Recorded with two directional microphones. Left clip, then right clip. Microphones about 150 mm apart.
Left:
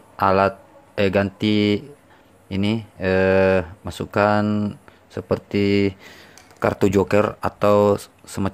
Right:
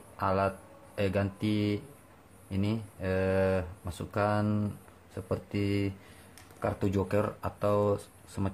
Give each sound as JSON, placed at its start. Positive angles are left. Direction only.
{"t": 0.2, "sound": "speech", "side_deg": 70}
{"t": 4.5, "sound": "a sound", "side_deg": 45}
{"t": 5.3, "sound": "speech", "side_deg": 65}